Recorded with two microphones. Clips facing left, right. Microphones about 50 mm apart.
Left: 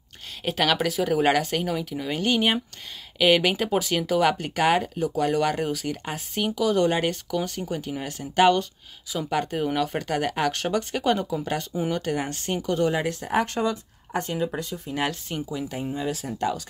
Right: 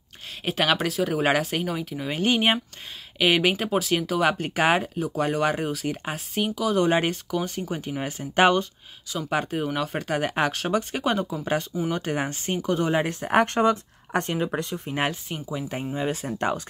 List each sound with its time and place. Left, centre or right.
0.5 s speech: centre
3.2 s speech: centre; by 8.6 s right
9.3 s speech: centre
11.9 s speech: right
13.3 s speech: right
15.2 s speech: centre
15.7 s speech: right